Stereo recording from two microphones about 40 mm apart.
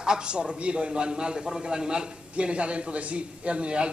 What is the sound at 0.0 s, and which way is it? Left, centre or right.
Speech, centre.